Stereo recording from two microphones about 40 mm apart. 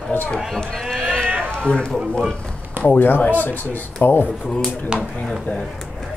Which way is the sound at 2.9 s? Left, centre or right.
Left.